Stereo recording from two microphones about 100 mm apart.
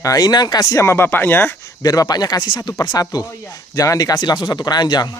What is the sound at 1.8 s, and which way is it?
Speech, 40° left (ahead or behind).